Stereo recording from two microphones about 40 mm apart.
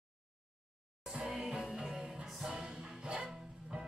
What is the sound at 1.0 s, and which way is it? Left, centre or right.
Music, centre.